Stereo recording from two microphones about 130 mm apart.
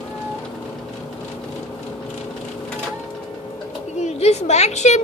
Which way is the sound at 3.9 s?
60° left (ahead or behind).